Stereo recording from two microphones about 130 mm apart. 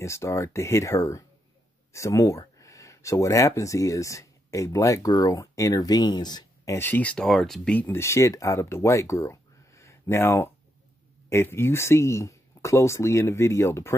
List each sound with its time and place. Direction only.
0.0 s speech: 20° left (ahead or behind)
6.7 s speech: 15° left (ahead or behind)
7.8 s speech: 20° left (ahead or behind)